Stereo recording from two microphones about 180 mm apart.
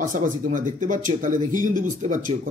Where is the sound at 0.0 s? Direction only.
45° right (ahead or behind).